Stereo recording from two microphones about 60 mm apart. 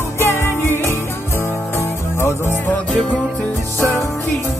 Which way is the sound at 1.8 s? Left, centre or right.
Left.